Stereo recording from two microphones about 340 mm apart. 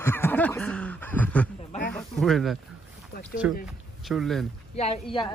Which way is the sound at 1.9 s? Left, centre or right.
Centre.